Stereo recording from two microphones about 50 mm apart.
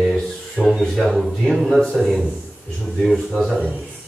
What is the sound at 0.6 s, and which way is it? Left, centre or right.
Speech, centre.